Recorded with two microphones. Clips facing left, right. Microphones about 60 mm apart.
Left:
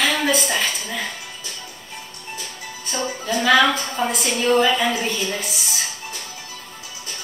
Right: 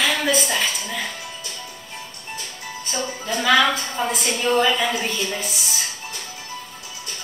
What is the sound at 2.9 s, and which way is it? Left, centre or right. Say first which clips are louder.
A woman's voice: left 3 dB; centre.